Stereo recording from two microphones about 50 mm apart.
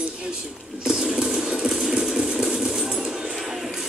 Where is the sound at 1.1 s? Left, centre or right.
Centre.